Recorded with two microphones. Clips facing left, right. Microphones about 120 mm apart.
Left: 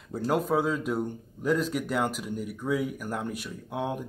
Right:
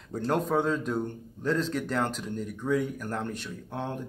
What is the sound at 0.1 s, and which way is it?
Speech, 5° left (ahead or behind).